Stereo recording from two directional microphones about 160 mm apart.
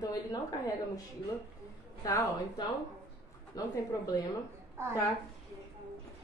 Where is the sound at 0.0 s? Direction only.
25° left (ahead or behind).